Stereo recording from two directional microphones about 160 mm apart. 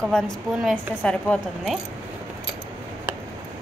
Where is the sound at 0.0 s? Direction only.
Centre (ahead or behind).